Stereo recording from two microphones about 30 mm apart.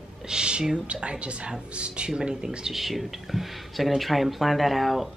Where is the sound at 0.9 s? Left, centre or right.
Right.